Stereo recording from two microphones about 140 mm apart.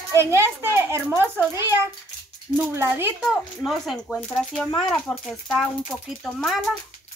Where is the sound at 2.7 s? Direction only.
15° right (ahead or behind).